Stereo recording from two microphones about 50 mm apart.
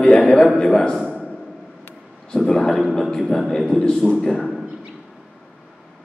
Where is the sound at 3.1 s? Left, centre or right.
Centre.